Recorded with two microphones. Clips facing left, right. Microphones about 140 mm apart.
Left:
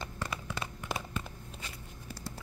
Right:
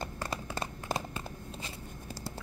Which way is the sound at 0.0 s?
40° right (ahead or behind).